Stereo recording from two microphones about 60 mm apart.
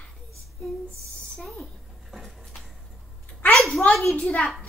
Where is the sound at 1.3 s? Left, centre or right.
Centre.